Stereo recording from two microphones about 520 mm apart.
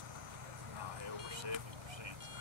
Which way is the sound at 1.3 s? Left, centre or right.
Right.